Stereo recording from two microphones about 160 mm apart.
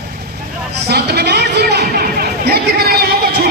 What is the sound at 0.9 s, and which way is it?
Chatter, 90° right.